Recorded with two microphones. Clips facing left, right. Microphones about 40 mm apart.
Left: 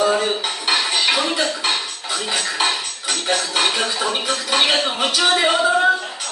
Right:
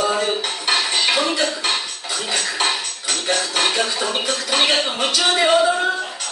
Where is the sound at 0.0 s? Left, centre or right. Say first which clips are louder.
Left 2 dB; centre.